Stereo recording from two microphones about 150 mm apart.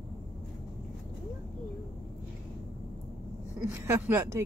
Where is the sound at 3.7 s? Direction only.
20° right (ahead or behind).